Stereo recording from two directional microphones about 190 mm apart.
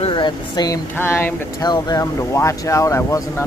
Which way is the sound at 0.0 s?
25° left (ahead or behind).